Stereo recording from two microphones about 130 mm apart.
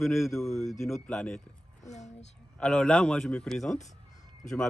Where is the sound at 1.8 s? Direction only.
65° left (ahead or behind).